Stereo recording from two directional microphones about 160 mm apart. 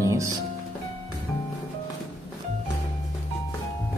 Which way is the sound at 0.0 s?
20° right (ahead or behind).